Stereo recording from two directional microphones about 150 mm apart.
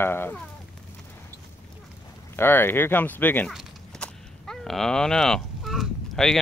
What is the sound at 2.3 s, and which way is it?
Speech, 15° left (ahead or behind).